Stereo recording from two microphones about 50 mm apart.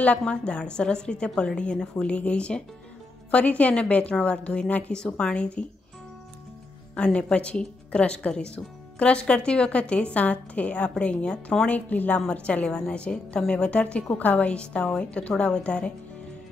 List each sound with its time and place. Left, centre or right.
0.5 s a woman's voice: centre
4.9 s a woman's voice: centre
7.0 s a woman's voice: left